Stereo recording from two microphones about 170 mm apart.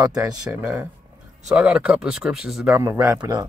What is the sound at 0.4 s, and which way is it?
Speech, 10° right (ahead or behind).